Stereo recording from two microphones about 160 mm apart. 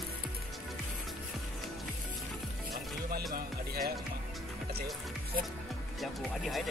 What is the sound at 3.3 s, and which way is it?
Music, 70° right (ahead or behind).